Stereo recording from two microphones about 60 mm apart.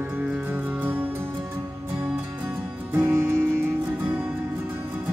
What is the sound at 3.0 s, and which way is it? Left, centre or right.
Music, right.